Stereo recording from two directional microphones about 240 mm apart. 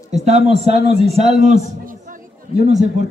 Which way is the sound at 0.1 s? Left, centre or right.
Right.